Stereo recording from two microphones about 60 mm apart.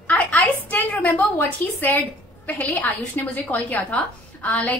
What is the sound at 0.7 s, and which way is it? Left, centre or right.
A woman's voice, left.